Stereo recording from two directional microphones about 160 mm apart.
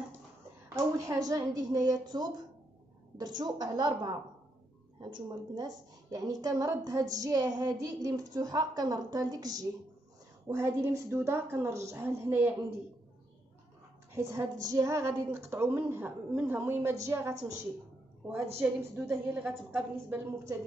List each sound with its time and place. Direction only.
0.9 s a woman's voice: 20° right (ahead or behind)
14.1 s a woman's voice: 20° right (ahead or behind)
18.6 s a woman's voice: 15° right (ahead or behind)